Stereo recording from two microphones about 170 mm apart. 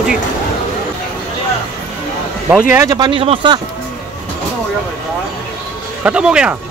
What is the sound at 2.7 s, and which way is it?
Speech, 20° right (ahead or behind).